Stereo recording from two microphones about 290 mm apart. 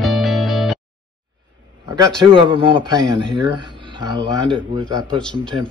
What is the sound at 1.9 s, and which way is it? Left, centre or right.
A man's voice, centre.